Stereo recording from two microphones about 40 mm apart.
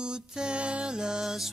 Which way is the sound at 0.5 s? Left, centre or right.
Right.